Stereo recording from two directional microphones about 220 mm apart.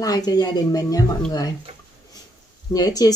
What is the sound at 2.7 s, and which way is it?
Speech, 15° left (ahead or behind).